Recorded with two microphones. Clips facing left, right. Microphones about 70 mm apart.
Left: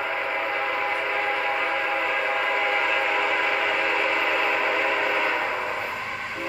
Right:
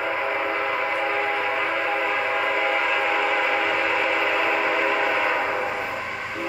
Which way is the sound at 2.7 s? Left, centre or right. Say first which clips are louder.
Right 1 dB; centre.